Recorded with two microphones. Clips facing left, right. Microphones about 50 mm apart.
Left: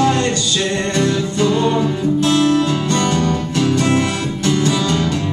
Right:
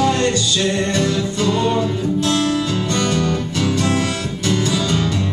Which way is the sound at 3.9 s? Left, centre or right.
Left.